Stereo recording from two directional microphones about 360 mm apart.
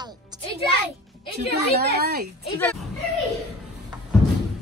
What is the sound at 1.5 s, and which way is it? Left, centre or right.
Speech, right.